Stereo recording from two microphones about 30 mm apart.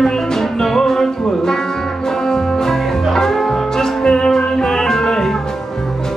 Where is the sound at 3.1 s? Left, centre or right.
Centre.